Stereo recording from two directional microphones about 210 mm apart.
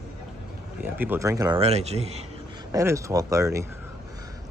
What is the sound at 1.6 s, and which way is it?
Speech, 30° right (ahead or behind).